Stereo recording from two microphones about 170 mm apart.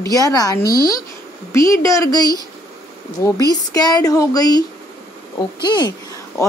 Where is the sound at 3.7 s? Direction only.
25° left (ahead or behind).